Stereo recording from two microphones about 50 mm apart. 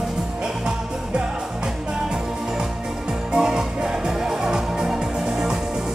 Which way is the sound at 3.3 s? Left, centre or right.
Centre.